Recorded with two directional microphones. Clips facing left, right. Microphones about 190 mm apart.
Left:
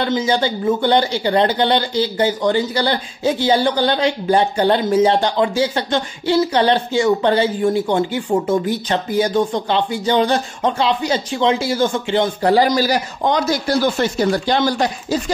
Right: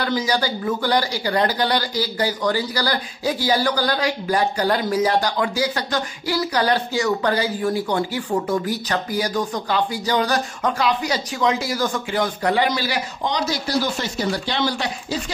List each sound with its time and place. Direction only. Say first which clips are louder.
0.0 s speech: left 4 dB; 25° left (ahead or behind); by 15.3 s 45° left (ahead or behind)